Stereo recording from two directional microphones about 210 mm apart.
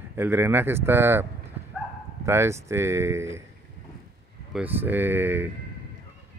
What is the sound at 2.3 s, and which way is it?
Speech, 10° right (ahead or behind).